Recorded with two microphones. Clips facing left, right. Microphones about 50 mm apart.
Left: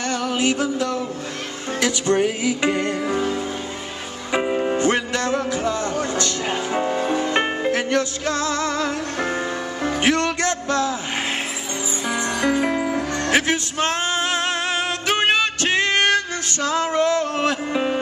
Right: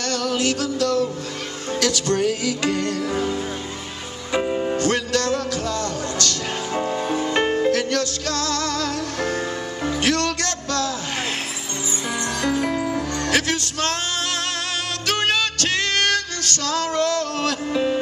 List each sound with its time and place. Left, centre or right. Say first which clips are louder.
0.0 s music: left 1 dB; centre
4.3 s music: left 1 dB; centre
12.1 s music: left 2 dB; centre